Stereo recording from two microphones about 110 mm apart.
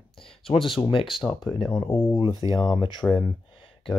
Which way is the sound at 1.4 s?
5° left (ahead or behind).